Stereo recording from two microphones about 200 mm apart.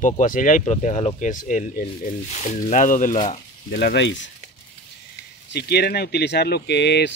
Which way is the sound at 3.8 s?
60° left (ahead or behind).